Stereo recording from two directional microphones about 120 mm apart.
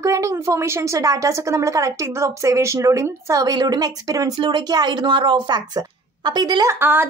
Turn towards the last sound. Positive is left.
turn(degrees=-35)  # may be behind; listen again after turning